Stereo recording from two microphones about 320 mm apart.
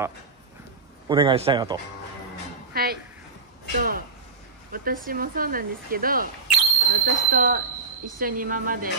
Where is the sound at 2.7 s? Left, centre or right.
Right.